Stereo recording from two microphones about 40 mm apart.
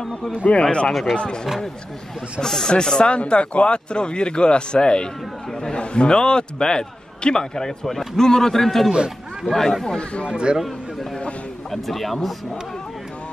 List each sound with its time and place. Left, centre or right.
0.5 s speech: left
2.4 s a man's voice: centre
9.8 s speech: left
10.2 s speech: right
11.7 s speech: centre